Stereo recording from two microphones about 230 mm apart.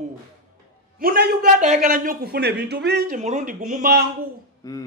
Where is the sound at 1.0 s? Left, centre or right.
Right.